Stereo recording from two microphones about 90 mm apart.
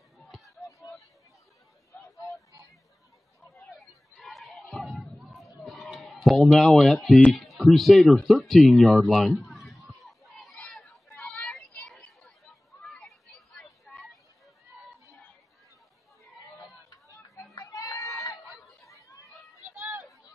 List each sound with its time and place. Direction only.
0.2 s a sound: centre (ahead or behind)
3.7 s chatter: centre (ahead or behind)
5.2 s a sound: centre (ahead or behind)
6.0 s speech: centre (ahead or behind)
9.5 s a sound: centre (ahead or behind)
16.9 s chatter: 35° left (ahead or behind)
17.6 s goat: 40° left (ahead or behind)
18.4 s chatter: centre (ahead or behind)
19.0 s chatter: 35° left (ahead or behind)